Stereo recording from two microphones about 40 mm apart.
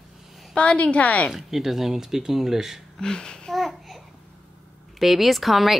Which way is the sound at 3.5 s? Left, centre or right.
Centre.